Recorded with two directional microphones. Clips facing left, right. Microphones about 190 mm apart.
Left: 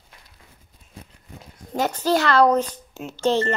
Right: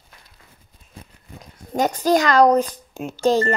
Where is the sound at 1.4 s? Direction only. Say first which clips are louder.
Right 3 dB; 15° right (ahead or behind).